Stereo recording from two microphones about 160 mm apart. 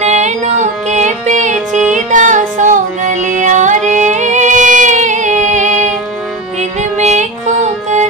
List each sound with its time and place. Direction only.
0.0 s female singing: 45° right (ahead or behind)
6.8 s music: 45° right (ahead or behind)